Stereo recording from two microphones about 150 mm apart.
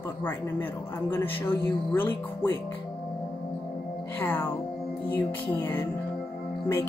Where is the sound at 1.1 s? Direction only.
15° left (ahead or behind).